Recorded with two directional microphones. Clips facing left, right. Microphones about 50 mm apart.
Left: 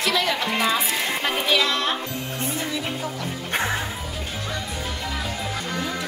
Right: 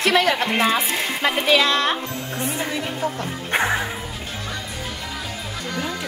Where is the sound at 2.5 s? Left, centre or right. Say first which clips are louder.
Right 2 dB; right.